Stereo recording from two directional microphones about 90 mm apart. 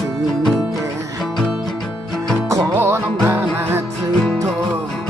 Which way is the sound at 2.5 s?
30° right (ahead or behind).